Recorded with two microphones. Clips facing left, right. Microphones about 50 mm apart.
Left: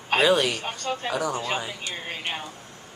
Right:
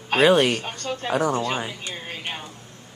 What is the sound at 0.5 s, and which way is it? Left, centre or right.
Speech, centre.